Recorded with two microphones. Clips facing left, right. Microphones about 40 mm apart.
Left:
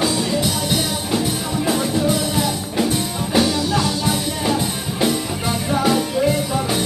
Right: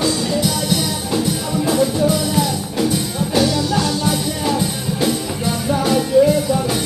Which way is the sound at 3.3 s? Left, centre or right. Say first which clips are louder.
Right 1 dB; centre.